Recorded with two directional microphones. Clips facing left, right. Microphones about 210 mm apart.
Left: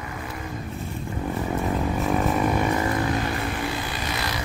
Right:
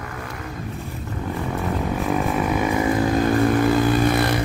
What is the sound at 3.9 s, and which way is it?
Vehicle, 50° right (ahead or behind).